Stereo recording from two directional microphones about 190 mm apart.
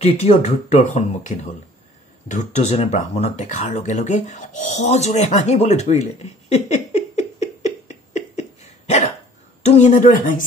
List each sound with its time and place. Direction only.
0.0 s speech: 35° left (ahead or behind)